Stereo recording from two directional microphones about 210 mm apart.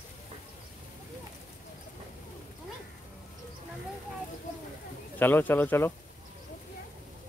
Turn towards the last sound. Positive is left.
turn(degrees=10)  # may be behind; listen again after turning